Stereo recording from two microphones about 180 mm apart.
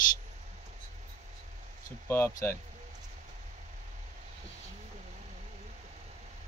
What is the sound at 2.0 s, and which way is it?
Speech, 15° left (ahead or behind).